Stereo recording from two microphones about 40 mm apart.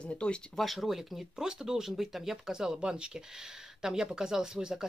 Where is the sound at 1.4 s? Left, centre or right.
Centre.